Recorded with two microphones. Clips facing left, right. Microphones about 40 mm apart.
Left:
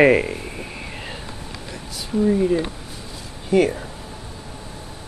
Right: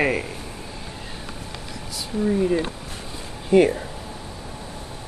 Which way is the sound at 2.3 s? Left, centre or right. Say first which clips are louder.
Left 1 dB; centre.